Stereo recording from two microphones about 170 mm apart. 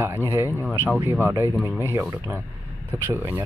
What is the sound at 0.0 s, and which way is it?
Speech, 15° right (ahead or behind).